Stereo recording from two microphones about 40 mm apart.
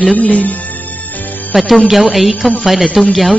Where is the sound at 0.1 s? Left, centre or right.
Left.